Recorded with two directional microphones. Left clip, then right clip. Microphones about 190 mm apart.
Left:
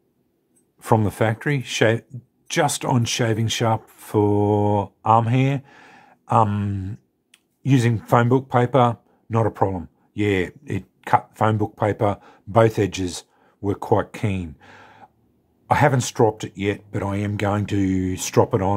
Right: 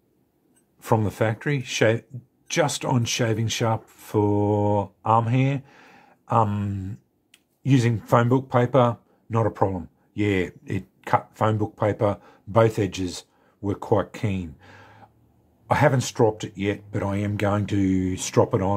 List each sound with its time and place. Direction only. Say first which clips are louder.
0.7 s speech: left 3 dB; 25° left (ahead or behind)